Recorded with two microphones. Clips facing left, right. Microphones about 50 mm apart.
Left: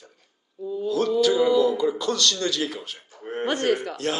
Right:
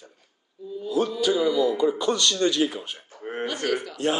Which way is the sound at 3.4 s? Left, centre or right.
Left.